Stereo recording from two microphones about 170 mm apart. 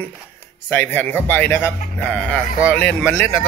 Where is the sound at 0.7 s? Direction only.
10° left (ahead or behind).